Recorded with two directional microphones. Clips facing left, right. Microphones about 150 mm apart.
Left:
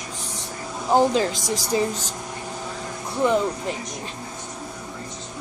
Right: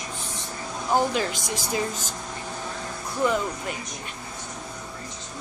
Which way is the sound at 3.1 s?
25° left (ahead or behind).